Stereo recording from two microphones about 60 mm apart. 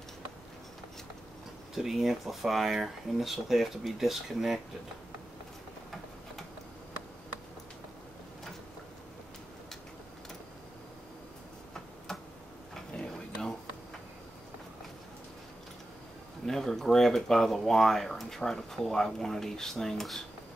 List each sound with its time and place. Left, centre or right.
1.8 s speech: centre
12.1 s tick-tock: centre
12.9 s a sound: centre
16.4 s speech: centre